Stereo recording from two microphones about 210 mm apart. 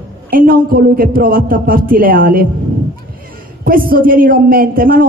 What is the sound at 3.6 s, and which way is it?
A man's voice, 45° right (ahead or behind).